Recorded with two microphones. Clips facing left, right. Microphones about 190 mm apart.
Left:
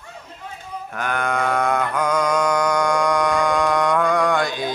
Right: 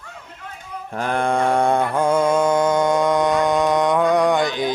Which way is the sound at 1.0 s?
30° right (ahead or behind).